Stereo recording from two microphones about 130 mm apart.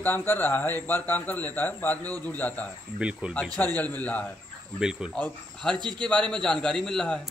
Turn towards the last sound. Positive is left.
turn(degrees=5)  # may be behind; listen again after turning